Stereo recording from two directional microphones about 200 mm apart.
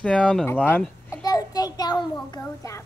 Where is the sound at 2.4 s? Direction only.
15° left (ahead or behind).